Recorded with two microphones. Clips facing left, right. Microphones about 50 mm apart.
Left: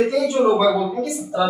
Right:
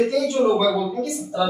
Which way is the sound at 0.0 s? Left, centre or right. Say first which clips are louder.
Left 2 dB; centre.